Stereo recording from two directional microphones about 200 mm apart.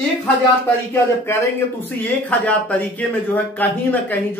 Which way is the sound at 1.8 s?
10° left (ahead or behind).